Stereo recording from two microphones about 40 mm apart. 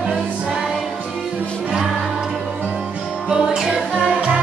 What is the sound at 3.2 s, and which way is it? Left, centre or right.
Music, centre.